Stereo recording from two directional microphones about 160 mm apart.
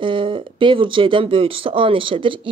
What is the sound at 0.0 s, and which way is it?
Speech, 30° right (ahead or behind).